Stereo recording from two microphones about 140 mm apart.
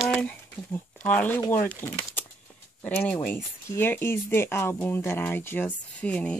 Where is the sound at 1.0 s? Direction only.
10° left (ahead or behind).